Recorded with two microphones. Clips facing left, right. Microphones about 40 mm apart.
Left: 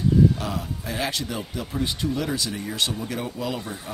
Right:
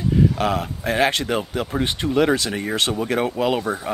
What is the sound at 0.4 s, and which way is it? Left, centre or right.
Speech, right.